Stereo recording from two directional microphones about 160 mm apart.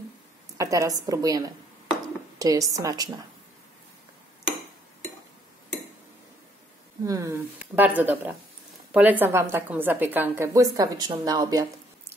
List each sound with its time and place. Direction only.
0.6 s a woman's voice: 20° right (ahead or behind)
7.1 s a woman's voice: 20° right (ahead or behind)
7.5 s a woman's voice: 10° right (ahead or behind)